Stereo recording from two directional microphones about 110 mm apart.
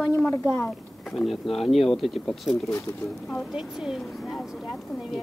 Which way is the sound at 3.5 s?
5° right (ahead or behind).